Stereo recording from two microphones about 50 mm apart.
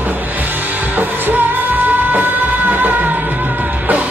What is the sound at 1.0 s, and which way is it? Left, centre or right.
Music, right.